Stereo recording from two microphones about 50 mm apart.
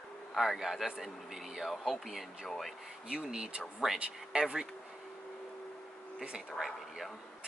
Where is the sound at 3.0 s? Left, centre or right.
Centre.